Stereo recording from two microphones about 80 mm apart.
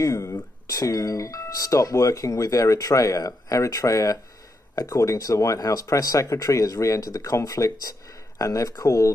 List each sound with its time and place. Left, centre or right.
0.0 s speech: left